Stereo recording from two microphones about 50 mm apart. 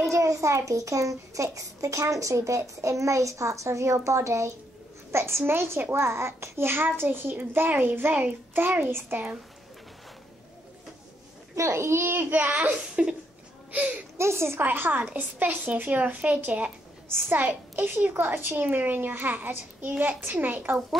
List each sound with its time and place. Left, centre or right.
0.1 s a child's voice: right
5.1 s a child's voice: right
5.5 s a child's voice: right
11.5 s a child's voice: right
12.3 s a child's voice: right
13.0 s speech: right
14.1 s a child's voice: right
14.6 s a child's voice: right